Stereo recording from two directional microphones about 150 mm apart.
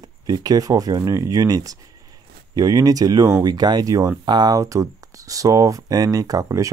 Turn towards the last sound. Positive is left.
turn(degrees=-20)  # may be behind; listen again after turning